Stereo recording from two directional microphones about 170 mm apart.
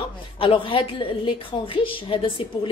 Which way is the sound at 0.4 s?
30° left (ahead or behind).